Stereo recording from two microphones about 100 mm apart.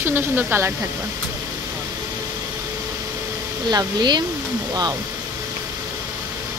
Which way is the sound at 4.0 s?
45° right (ahead or behind).